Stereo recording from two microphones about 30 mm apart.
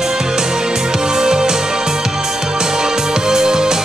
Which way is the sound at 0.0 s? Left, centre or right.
Centre.